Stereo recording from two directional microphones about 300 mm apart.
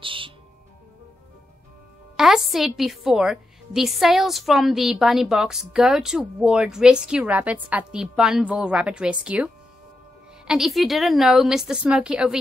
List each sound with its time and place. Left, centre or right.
0.0 s music: centre
2.1 s a woman's voice: centre